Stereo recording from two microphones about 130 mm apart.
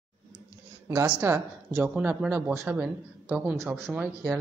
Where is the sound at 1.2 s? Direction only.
15° right (ahead or behind).